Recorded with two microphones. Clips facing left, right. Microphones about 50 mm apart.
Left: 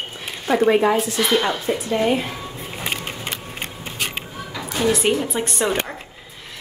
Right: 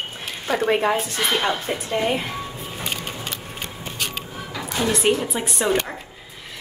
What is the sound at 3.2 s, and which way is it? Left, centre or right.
Vehicle, left.